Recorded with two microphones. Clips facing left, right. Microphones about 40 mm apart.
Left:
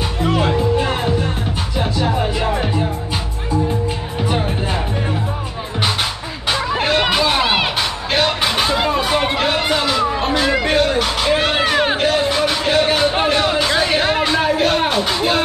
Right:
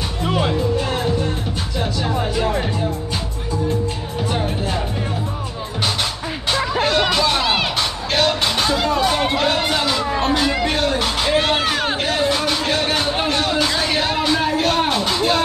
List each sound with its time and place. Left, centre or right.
0.2 s music: centre
0.5 s music: left
6.5 s a sound: centre
8.1 s music: centre